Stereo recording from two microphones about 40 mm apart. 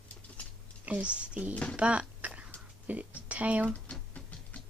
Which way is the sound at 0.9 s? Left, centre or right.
Right.